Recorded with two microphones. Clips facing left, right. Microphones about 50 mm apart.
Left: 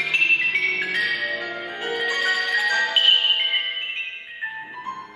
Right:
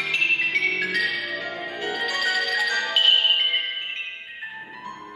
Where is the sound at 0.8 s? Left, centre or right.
Left.